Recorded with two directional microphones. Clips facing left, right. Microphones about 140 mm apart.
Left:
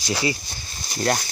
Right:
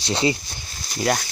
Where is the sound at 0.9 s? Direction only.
Centre (ahead or behind).